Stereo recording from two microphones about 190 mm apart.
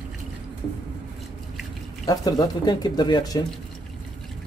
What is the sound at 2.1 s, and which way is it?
Speech, 20° left (ahead or behind).